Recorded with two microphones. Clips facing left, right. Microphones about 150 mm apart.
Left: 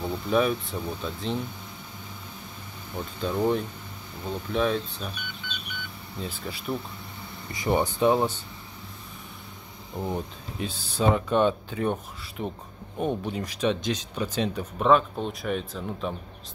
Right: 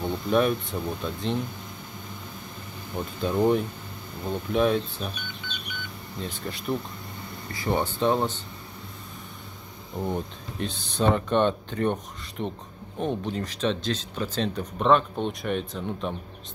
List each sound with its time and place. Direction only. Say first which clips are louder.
0.0 s speech: right 1 dB; centre (ahead or behind)
3.0 s speech: right 3 dB; centre (ahead or behind)
6.1 s speech: right 1 dB; 5° left (ahead or behind)
7.5 s speech: left 2 dB; 15° left (ahead or behind)
9.9 s speech: right 1 dB; 5° left (ahead or behind)